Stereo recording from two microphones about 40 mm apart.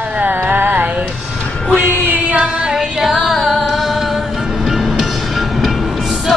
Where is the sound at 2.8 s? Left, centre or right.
Centre.